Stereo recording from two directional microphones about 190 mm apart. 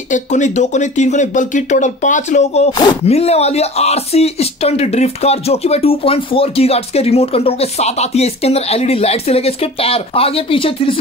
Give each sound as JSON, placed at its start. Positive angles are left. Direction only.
{"t": 0.1, "sound": "speech", "side_deg": 40}